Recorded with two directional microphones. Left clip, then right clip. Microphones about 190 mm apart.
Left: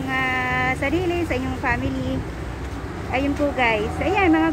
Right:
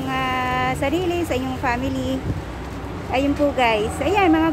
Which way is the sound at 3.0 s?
15° right (ahead or behind).